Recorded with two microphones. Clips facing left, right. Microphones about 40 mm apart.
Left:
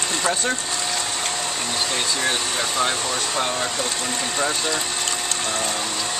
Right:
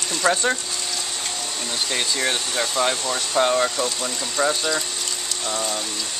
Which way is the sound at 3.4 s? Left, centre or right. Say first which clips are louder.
Right 8 dB; centre.